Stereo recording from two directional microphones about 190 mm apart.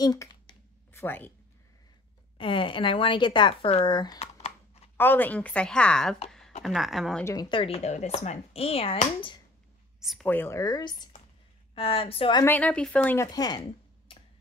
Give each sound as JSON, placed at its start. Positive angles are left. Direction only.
{"t": 0.0, "sound": "a sound", "side_deg": 20}
{"t": 2.3, "sound": "speech", "side_deg": 25}
{"t": 4.9, "sound": "speech", "side_deg": 10}
{"t": 7.2, "sound": "speech", "side_deg": 20}
{"t": 9.9, "sound": "a sound", "side_deg": 0}
{"t": 10.2, "sound": "speech", "side_deg": 10}
{"t": 12.4, "sound": "speech", "side_deg": 10}
{"t": 14.1, "sound": "tick-tock", "side_deg": 30}